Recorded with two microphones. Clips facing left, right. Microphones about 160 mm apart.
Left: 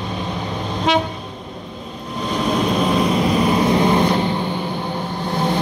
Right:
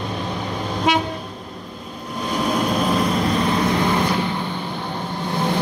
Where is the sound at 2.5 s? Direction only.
Centre (ahead or behind); by 4.1 s 20° left (ahead or behind).